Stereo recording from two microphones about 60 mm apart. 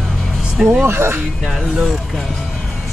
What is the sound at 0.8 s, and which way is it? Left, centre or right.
Speech, right.